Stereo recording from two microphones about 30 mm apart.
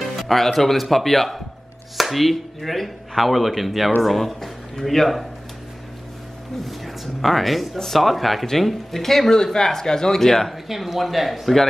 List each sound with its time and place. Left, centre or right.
0.2 s speech: centre
7.2 s speech: centre
10.5 s speech: centre